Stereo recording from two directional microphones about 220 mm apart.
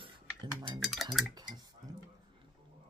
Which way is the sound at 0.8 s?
Centre (ahead or behind).